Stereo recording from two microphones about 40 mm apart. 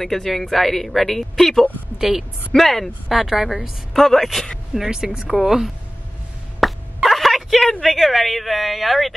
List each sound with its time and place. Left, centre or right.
0.0 s speech: centre
2.0 s a woman's voice: centre
2.5 s speech: centre
3.1 s a man's voice: centre
4.9 s a woman's voice: centre
6.6 s a sound: centre
7.8 s speech: centre